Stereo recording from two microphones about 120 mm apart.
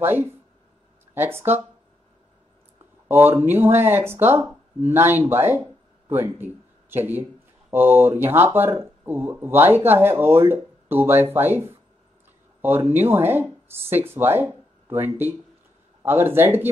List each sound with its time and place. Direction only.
0.0 s speech: 15° right (ahead or behind)
3.1 s speech: 15° right (ahead or behind)